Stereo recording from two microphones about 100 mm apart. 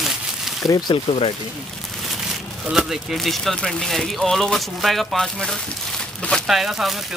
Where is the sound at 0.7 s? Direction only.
45° left (ahead or behind).